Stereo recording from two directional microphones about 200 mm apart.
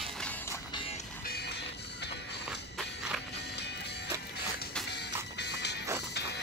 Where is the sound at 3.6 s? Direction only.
55° left (ahead or behind).